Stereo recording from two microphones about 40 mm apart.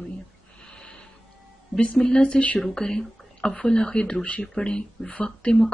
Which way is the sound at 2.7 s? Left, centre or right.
Centre.